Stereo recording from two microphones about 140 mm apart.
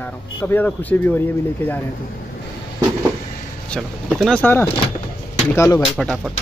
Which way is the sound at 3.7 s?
5° left (ahead or behind).